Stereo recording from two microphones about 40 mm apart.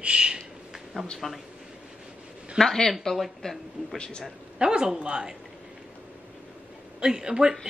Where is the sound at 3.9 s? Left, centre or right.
Left.